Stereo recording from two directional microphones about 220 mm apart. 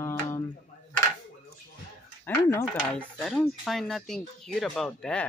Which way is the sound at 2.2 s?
10° left (ahead or behind).